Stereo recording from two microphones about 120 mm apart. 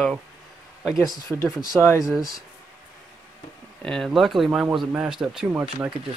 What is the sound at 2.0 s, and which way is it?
Speech, 5° right (ahead or behind).